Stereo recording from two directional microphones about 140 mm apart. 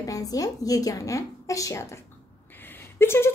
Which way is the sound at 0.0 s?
25° left (ahead or behind).